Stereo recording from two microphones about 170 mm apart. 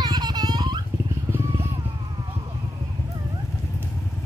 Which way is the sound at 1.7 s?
30° right (ahead or behind).